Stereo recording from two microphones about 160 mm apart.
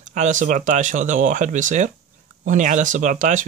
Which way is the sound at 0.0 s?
50° right (ahead or behind).